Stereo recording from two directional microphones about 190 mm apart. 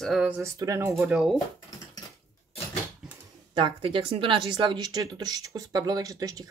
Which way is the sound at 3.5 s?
25° right (ahead or behind).